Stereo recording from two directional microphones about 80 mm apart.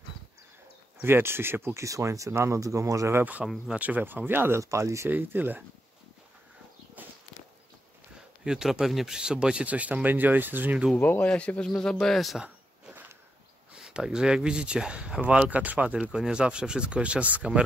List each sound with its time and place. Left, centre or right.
1.0 s speech: right
3.2 s speech: centre; by 5.1 s right
5.1 s speech: right
8.5 s speech: centre
11.0 s speech: centre
13.7 s speech: centre